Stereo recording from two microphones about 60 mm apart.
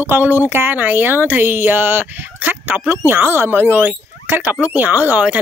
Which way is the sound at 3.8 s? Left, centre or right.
Right.